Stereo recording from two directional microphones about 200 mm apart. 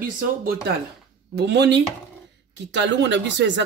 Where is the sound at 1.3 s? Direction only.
55° right (ahead or behind).